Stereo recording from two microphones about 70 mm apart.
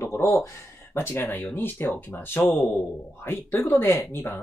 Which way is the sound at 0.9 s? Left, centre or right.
Left.